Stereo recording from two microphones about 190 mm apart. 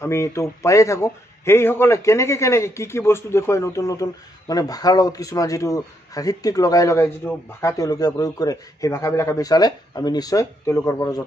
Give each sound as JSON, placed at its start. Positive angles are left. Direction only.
{"t": 0.0, "sound": "a man's voice", "side_deg": 15}